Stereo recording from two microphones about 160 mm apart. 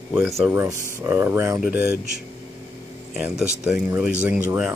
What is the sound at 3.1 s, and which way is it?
Speech, 5° right (ahead or behind).